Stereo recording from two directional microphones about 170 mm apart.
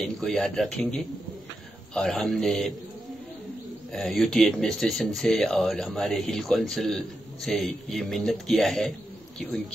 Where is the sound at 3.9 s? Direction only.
Centre (ahead or behind).